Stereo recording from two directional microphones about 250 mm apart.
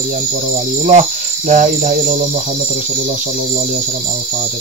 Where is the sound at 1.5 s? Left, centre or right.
Right.